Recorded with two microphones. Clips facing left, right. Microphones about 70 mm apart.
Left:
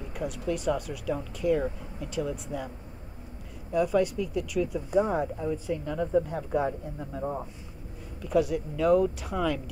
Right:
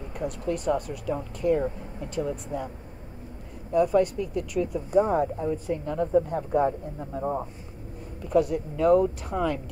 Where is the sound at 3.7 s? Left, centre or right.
Right.